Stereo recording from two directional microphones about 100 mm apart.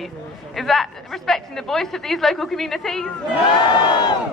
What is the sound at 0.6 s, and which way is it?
A woman's voice, centre (ahead or behind).